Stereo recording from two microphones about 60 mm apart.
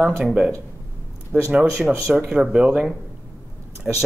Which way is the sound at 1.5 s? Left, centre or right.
Centre.